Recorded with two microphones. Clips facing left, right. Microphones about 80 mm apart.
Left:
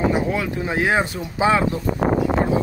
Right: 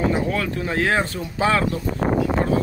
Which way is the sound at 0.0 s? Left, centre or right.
Centre.